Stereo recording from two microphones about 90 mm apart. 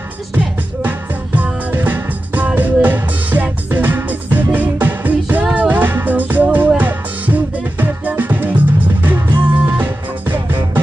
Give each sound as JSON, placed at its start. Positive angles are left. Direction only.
{"t": 0.8, "sound": "music", "side_deg": -20}